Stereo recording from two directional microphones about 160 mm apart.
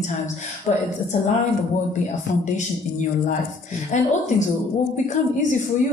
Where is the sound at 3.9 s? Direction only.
50° left (ahead or behind).